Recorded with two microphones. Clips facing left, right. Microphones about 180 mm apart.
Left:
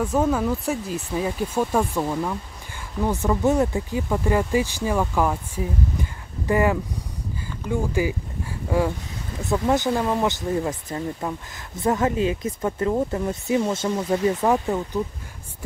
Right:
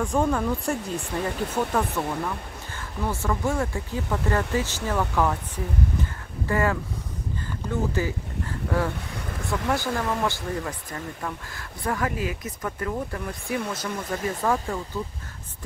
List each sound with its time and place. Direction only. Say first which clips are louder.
0.0 s speech: left 2 dB; 5° left (ahead or behind)
6.4 s speech: left 4 dB; 15° left (ahead or behind)
9.7 s speech: left 5 dB; 20° left (ahead or behind)